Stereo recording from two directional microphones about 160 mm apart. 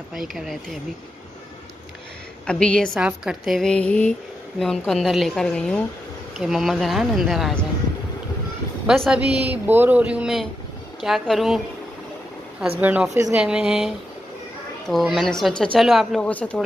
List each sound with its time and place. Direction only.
0.1 s a woman's voice: centre (ahead or behind)
2.4 s a woman's voice: 5° left (ahead or behind)
3.0 s a woman's voice: 5° right (ahead or behind)
8.8 s a woman's voice: centre (ahead or behind)
12.8 s a woman's voice: 10° right (ahead or behind); by 16.6 s 10° left (ahead or behind)